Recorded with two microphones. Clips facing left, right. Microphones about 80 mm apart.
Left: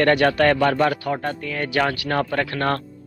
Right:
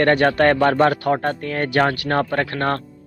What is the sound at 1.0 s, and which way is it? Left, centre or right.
Speech, right.